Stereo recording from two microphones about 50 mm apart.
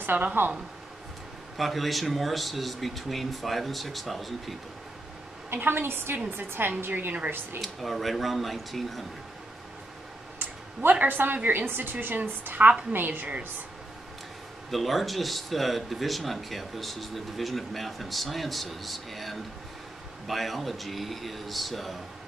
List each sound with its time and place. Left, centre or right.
0.0 s a woman's voice: right
1.6 s speech: centre
5.5 s a woman's voice: right
7.6 s speech: centre
10.9 s a woman's voice: right
14.7 s speech: centre